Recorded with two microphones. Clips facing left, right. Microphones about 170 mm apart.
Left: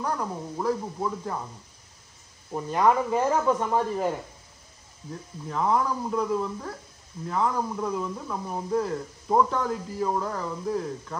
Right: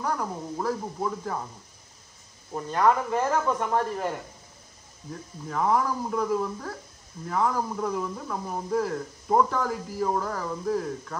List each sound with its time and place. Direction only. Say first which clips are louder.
0.0 s speech: even; centre (ahead or behind)
2.5 s speech: left 1 dB; 5° left (ahead or behind)
5.5 s speech: even; 5° right (ahead or behind)